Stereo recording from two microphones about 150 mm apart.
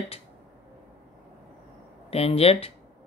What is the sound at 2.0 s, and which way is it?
Speech, 40° left (ahead or behind).